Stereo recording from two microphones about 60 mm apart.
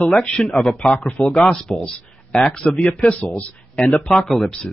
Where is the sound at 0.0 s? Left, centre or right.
Centre.